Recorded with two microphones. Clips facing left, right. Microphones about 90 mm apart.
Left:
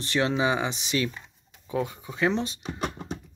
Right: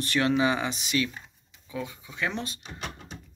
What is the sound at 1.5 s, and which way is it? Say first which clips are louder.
Speech: left 6 dB; 40° left (ahead or behind).